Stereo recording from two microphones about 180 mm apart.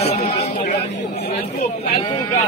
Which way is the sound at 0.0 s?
35° left (ahead or behind).